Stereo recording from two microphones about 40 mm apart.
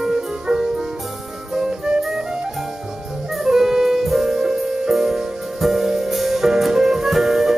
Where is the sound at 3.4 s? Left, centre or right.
Centre.